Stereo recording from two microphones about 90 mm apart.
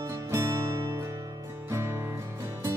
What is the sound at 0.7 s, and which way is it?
Music, 60° right (ahead or behind).